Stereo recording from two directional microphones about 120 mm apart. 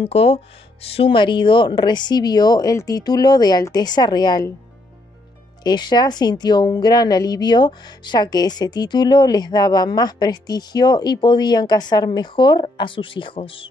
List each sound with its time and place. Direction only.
0.0 s speech: 55° left (ahead or behind); by 4.5 s 35° left (ahead or behind)
5.6 s speech: 35° left (ahead or behind)